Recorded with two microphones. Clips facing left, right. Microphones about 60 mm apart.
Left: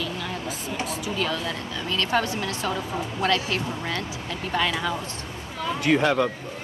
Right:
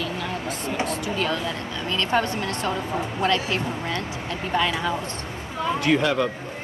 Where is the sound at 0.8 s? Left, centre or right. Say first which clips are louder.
Right 2 dB; centre.